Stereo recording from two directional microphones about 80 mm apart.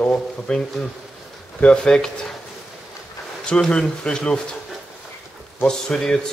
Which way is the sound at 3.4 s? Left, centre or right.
Centre.